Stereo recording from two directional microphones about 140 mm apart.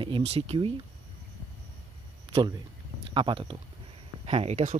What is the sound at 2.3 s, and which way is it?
Speech, 30° right (ahead or behind).